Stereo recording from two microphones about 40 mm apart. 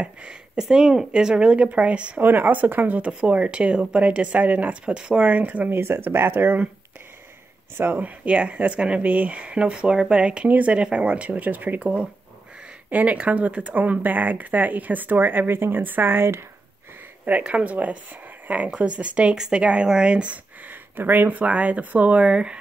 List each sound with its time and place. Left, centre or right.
0.0 s speech: right
2.1 s speech: right
3.1 s speech: right
4.9 s speech: right
5.2 s speech: right
5.7 s speech: right
6.3 s speech: right
7.7 s speech: right
8.0 s speech: right
10.5 s speech: right
11.8 s speech: right
15.8 s speech: right
17.4 s speech: right
20.6 s speech: right